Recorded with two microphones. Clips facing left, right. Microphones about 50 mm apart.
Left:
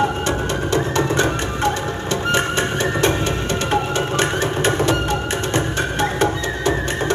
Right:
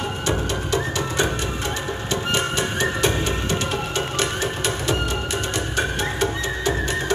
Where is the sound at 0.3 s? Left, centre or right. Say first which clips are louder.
Left 3 dB; left.